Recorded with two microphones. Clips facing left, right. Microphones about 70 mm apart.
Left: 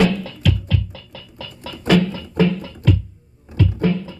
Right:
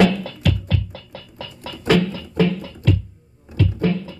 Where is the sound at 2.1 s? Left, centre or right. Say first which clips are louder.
Left 1 dB; left.